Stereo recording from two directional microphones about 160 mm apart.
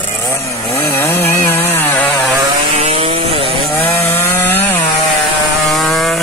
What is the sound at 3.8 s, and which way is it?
Chainsaw, 15° left (ahead or behind).